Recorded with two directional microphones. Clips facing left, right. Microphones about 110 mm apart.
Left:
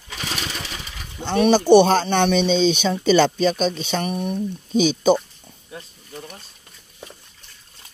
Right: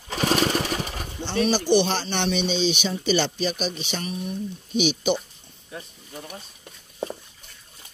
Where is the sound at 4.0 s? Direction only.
60° left (ahead or behind).